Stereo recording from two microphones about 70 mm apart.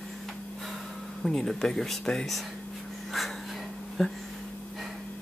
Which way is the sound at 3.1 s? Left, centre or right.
Centre.